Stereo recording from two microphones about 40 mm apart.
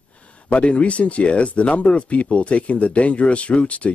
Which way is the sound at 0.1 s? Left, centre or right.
Left.